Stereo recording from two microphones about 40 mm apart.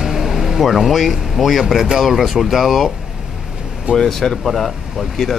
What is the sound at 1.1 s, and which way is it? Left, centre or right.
Speech, centre.